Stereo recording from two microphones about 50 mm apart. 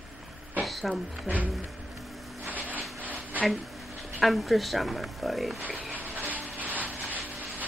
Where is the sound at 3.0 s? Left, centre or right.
Right.